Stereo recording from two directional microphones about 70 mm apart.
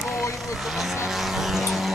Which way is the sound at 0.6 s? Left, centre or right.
Centre.